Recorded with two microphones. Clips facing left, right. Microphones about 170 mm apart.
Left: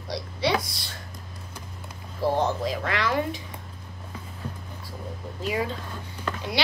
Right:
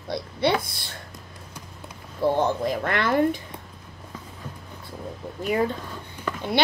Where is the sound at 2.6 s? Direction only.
55° right (ahead or behind).